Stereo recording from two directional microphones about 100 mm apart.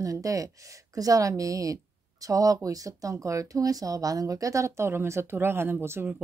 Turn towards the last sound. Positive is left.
turn(degrees=-25)  # may be behind; listen again after turning